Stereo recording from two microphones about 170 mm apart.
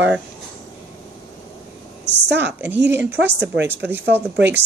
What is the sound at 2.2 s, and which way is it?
Speech, 90° right.